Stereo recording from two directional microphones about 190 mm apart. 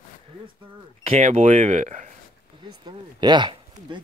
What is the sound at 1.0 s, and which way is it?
Speech, 35° right (ahead or behind).